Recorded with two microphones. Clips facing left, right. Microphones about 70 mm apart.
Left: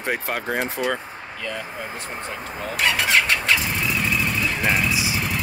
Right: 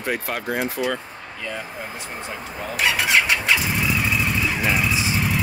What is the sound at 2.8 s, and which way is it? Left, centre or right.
Vehicle, centre.